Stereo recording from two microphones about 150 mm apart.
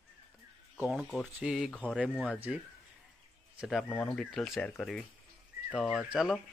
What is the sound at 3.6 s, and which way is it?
Speech, 5° right (ahead or behind).